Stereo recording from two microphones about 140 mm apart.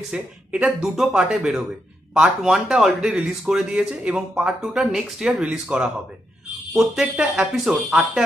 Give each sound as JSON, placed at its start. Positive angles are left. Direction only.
{"t": 0.1, "sound": "speech", "side_deg": -10}